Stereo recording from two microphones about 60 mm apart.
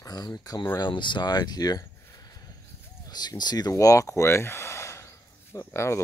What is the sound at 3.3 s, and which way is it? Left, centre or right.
Speech, left.